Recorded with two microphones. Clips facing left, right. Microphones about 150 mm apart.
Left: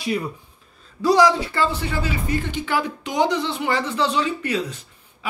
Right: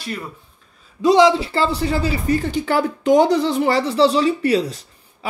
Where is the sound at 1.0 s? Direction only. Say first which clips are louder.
Right 3 dB; 25° right (ahead or behind).